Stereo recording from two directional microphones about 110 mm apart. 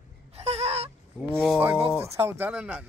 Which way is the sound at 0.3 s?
70° right (ahead or behind).